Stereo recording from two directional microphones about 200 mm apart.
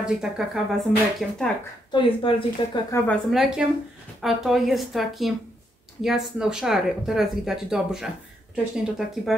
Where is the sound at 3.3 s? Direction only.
5° right (ahead or behind).